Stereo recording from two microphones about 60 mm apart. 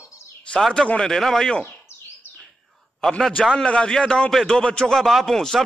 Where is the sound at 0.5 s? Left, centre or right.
Centre.